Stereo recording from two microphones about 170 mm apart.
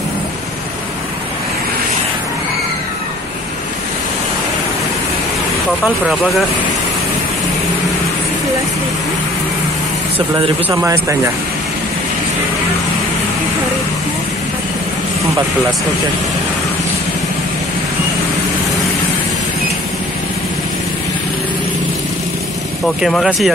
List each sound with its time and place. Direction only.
10.7 s speech: 20° right (ahead or behind)
23.0 s speech: centre (ahead or behind)